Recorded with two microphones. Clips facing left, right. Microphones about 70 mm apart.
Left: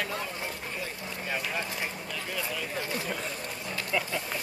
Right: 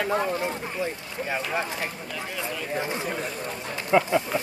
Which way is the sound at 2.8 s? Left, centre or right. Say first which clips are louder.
Right 6 dB; right.